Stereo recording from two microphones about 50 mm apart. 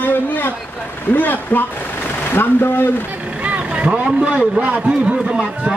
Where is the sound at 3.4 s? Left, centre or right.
Right.